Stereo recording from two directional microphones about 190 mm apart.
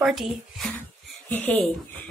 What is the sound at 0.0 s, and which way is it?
Speech, centre (ahead or behind).